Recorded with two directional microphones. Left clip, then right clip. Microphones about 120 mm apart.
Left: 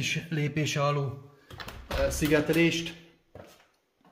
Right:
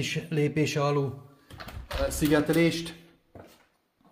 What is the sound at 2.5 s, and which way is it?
Speech, 35° right (ahead or behind).